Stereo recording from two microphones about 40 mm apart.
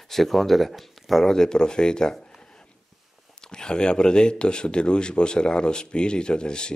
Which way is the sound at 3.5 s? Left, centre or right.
Centre.